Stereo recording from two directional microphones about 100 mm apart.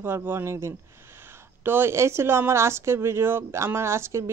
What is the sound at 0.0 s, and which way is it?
Speech, 20° right (ahead or behind).